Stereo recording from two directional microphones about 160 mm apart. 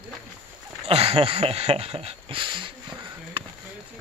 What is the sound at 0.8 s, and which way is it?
Speech, 40° right (ahead or behind).